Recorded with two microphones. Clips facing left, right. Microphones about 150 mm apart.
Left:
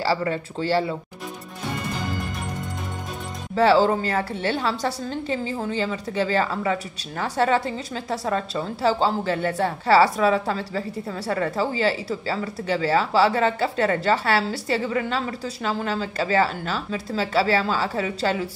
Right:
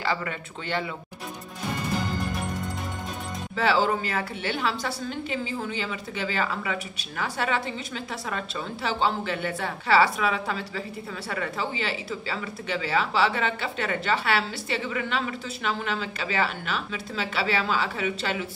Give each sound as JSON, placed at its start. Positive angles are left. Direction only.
{"t": 0.0, "sound": "a woman's voice", "side_deg": 35}
{"t": 3.5, "sound": "a woman's voice", "side_deg": 35}